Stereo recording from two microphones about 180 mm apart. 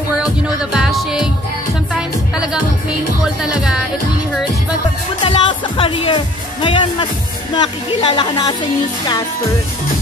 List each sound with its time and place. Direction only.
0.7 s music: 5° right (ahead or behind)
5.2 s music: 30° left (ahead or behind)
7.5 s speech: 30° left (ahead or behind)